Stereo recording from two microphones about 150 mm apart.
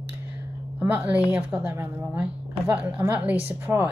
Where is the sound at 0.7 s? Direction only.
10° right (ahead or behind).